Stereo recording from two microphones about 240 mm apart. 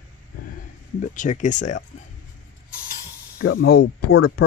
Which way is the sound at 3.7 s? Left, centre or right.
Left.